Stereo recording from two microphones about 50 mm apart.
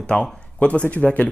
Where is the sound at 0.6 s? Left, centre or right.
Left.